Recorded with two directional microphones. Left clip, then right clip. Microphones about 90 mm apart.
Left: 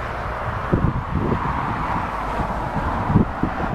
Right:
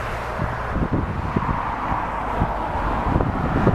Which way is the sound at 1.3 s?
45° left (ahead or behind).